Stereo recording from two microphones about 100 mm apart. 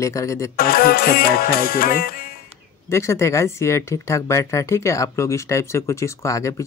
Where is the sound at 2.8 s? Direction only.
30° left (ahead or behind).